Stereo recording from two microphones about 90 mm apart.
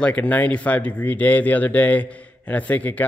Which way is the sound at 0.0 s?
15° left (ahead or behind).